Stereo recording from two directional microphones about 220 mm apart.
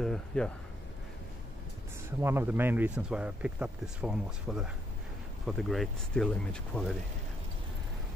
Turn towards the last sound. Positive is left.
turn(degrees=5)  # may be behind; listen again after turning